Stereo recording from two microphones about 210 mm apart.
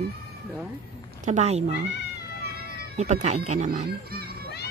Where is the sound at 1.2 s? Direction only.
30° right (ahead or behind).